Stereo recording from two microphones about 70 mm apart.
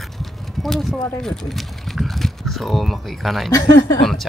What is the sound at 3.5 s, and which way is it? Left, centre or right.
Speech, left.